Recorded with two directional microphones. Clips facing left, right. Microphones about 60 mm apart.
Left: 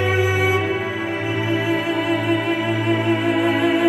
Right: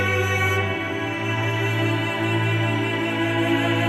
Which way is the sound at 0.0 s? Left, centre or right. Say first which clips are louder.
Left 4 dB; left.